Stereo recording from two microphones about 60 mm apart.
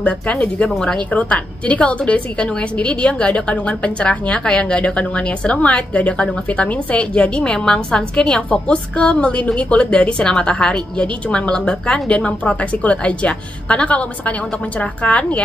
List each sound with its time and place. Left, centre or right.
0.0 s a woman's voice: left